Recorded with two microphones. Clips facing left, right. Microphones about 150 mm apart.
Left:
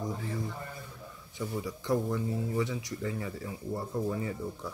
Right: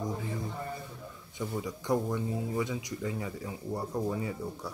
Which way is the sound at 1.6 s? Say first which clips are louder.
Even; 20° right (ahead or behind).